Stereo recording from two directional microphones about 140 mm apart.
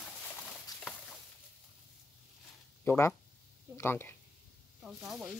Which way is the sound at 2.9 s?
20° left (ahead or behind).